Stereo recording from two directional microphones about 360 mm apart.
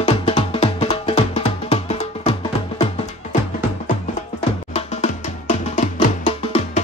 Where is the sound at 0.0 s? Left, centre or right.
Centre.